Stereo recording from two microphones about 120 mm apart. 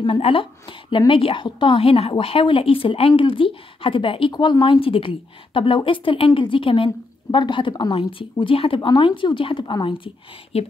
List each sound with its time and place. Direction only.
0.2 s a woman's voice: 50° left (ahead or behind)